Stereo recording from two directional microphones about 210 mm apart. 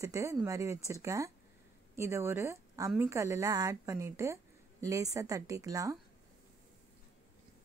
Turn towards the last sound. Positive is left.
turn(degrees=-15)  # may be behind; listen again after turning